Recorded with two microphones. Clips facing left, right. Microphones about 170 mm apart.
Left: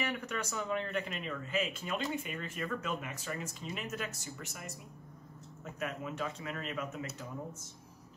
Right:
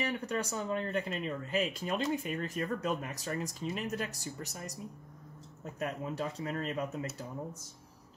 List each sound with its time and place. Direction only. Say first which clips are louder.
0.0 s speech: right 3 dB; 30° right (ahead or behind)
5.8 s speech: right 2 dB; 35° right (ahead or behind)